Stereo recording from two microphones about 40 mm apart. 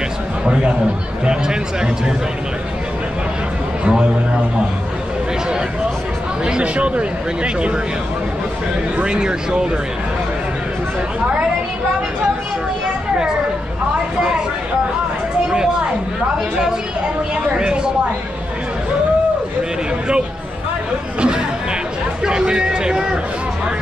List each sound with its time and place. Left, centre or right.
1.2 s speech: centre
3.8 s a man's voice: right
6.4 s speech: right
8.9 s speech: right
17.6 s speech: right
21.2 s chatter: centre
22.2 s music: right